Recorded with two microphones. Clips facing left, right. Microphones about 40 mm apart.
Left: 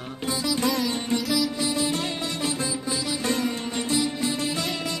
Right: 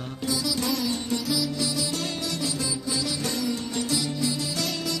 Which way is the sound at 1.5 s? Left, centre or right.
Left.